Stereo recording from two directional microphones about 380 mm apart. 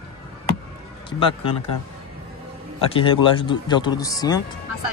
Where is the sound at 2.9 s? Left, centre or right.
Centre.